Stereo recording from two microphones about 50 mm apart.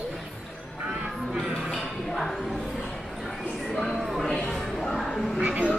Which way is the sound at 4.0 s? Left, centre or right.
Centre.